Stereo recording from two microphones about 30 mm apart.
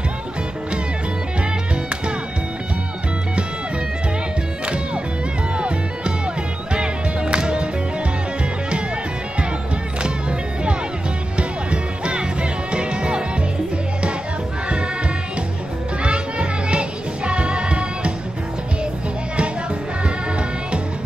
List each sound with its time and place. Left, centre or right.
5.6 s music: right
11.3 s music: right
16.0 s music: right